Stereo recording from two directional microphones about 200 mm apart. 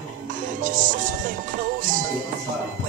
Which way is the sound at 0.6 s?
40° right (ahead or behind).